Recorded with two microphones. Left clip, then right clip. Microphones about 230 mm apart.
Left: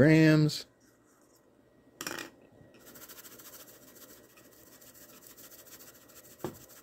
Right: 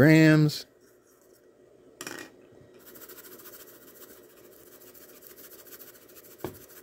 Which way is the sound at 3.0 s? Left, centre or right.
Centre.